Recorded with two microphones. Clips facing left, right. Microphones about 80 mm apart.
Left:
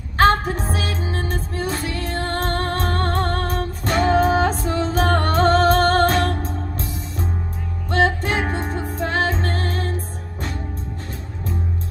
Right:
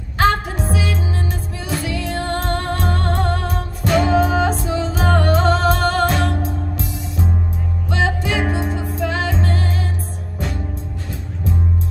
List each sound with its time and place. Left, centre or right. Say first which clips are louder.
0.2 s music: left 1 dB; left